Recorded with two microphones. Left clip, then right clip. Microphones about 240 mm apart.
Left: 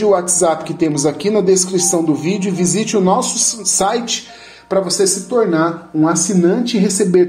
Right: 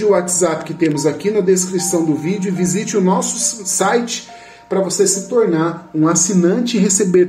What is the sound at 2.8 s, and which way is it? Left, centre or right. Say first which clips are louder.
Speech: left 2 dB; centre.